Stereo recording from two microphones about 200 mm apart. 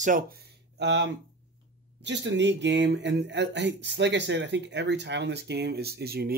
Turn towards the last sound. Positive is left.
turn(degrees=-50)  # may be behind; listen again after turning